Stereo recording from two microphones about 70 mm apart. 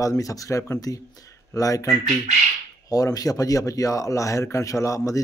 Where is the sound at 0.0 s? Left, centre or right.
Left.